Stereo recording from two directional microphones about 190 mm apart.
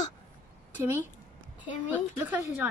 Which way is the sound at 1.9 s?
10° right (ahead or behind).